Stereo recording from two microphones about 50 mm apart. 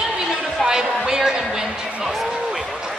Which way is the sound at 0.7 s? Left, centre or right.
Centre.